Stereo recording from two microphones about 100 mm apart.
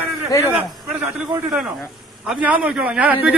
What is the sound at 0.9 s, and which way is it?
Speech, 15° right (ahead or behind).